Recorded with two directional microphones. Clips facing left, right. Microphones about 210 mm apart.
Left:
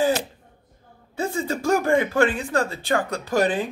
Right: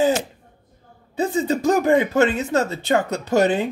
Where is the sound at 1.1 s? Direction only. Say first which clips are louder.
Right 5 dB; 20° right (ahead or behind).